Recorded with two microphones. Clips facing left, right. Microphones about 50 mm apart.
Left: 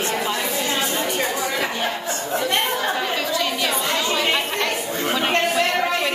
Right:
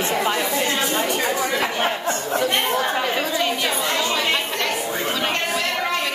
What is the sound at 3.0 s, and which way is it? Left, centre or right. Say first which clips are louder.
Chatter: right 1 dB; right.